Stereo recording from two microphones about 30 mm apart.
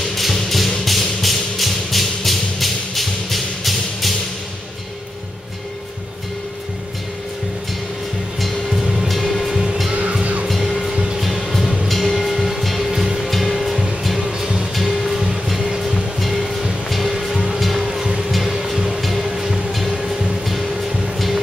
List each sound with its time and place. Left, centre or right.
0.0 s music: centre
8.4 s music: centre
9.1 s music: centre
10.6 s music: centre
12.9 s music: centre
13.2 s music: centre
14.4 s music: centre
14.8 s music: centre
17.8 s music: centre
18.5 s music: centre